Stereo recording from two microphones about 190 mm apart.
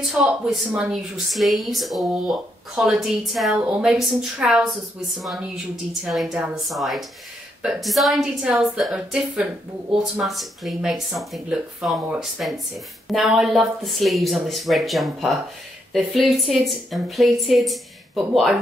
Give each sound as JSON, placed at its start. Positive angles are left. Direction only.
{"t": 0.1, "sound": "speech", "side_deg": -5}